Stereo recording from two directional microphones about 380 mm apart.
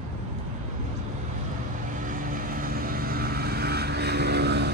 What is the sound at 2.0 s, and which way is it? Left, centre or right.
Vehicle, right.